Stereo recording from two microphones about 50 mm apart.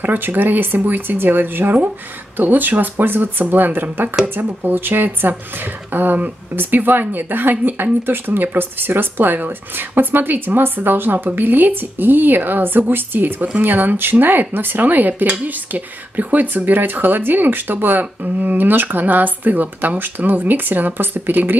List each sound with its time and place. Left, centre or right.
0.0 s speech: right